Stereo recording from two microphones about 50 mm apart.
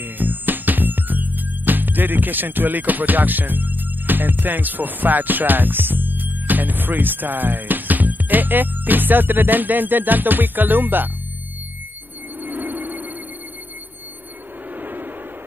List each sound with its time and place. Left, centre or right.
0.0 s music: right
12.4 s music: right
14.8 s a sound: right